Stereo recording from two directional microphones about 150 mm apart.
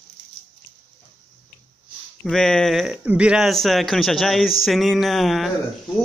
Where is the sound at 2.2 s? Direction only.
5° left (ahead or behind).